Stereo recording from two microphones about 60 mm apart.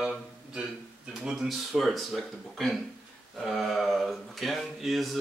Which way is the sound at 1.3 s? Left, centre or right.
Centre.